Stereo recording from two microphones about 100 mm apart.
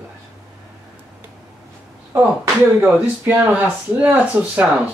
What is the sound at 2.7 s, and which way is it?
Speech, 20° right (ahead or behind).